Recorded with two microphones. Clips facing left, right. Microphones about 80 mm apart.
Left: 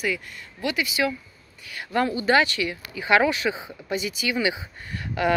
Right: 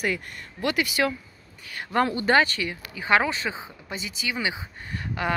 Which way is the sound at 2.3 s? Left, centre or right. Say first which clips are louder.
Left 1 dB; right.